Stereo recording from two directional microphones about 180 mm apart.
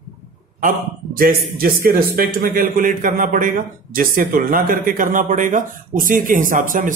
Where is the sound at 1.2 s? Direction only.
55° right (ahead or behind).